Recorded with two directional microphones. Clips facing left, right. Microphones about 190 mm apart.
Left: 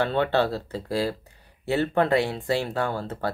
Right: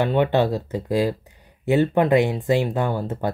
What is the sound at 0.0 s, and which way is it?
Speech, 15° right (ahead or behind).